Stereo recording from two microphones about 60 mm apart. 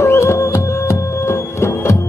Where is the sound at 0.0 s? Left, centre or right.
Left.